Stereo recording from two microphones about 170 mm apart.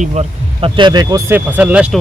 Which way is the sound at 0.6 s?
30° right (ahead or behind).